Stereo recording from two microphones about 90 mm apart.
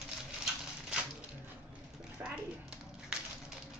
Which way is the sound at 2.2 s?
10° right (ahead or behind).